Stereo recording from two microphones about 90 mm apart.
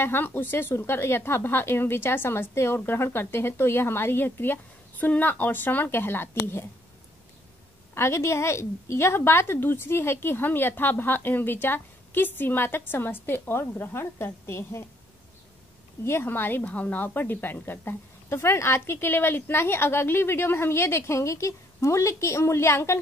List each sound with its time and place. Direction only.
0.0 s a woman's voice: 25° left (ahead or behind)
7.9 s a woman's voice: 30° left (ahead or behind)
16.0 s a woman's voice: 25° left (ahead or behind)